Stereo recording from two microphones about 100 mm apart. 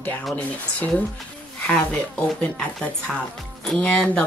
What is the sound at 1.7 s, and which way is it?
Speech, 10° left (ahead or behind).